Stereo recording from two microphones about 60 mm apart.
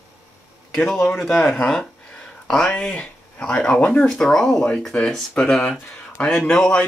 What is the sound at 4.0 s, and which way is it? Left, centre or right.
A man's voice, centre.